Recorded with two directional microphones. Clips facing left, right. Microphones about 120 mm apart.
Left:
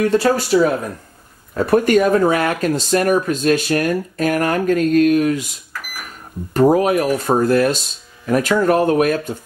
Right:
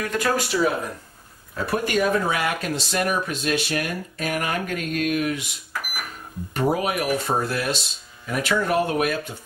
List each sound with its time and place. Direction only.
0.0 s speech: 30° left (ahead or behind)
6.5 s speech: 40° left (ahead or behind)